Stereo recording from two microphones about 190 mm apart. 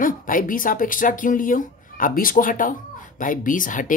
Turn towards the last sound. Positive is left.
turn(degrees=45)  # may be behind; listen again after turning